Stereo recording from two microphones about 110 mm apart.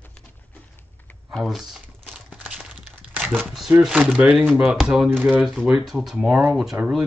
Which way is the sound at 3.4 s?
5° right (ahead or behind).